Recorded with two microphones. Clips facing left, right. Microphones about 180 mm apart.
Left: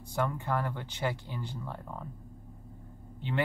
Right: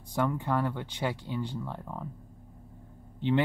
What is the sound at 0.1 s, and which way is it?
Speech, 15° right (ahead or behind).